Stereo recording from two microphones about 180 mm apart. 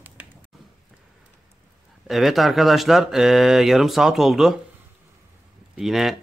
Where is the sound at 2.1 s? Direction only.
Centre (ahead or behind).